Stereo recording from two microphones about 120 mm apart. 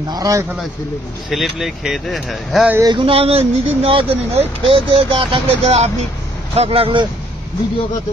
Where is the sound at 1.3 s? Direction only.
Centre (ahead or behind).